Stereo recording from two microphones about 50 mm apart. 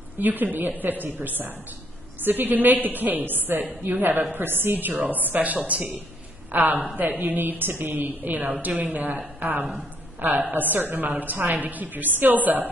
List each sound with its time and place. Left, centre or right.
0.2 s a woman's voice: right